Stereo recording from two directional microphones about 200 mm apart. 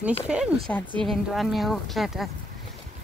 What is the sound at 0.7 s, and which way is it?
Speech, 5° left (ahead or behind).